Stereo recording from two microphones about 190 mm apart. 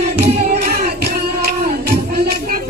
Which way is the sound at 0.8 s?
55° right (ahead or behind).